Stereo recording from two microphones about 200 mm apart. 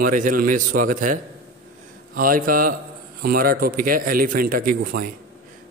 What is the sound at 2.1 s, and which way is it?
A man's voice, 45° right (ahead or behind).